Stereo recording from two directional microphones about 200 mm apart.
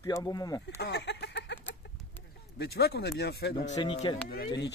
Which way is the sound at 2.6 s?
55° left (ahead or behind).